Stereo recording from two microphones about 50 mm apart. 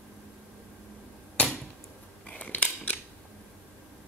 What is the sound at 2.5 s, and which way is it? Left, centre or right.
Mechanisms, left.